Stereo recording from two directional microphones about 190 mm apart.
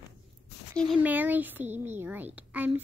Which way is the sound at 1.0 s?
10° right (ahead or behind).